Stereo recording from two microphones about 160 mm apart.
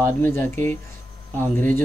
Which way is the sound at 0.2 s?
10° left (ahead or behind).